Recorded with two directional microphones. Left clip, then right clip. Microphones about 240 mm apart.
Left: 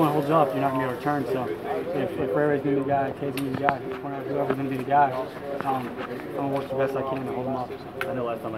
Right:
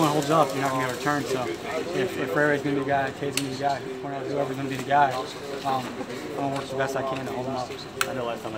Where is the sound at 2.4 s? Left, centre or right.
Centre.